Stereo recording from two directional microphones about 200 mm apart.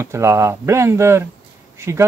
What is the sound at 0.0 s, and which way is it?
Speech, 15° right (ahead or behind).